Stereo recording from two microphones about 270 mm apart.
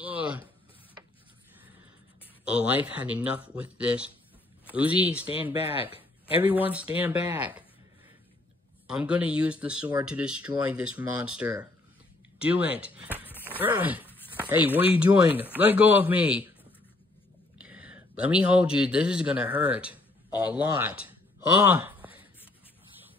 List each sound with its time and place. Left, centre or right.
0.0 s a sound: centre
2.4 s speech: centre
5.2 s speech: left
6.4 s speech: centre
8.8 s speech: centre
17.6 s speech: centre
21.6 s a sound: centre